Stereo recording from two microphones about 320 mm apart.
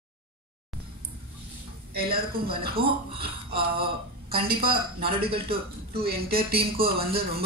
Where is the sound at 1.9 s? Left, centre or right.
Right.